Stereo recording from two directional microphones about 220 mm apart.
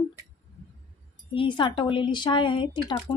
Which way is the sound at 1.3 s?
25° left (ahead or behind).